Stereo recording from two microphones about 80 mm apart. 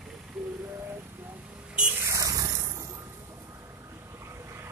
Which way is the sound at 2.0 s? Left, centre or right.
Right.